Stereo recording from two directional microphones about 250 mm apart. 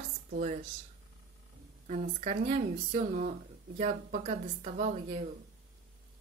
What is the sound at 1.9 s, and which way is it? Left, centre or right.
Speech, right.